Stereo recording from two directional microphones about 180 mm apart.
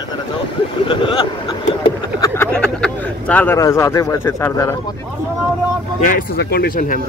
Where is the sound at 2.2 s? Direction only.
15° left (ahead or behind).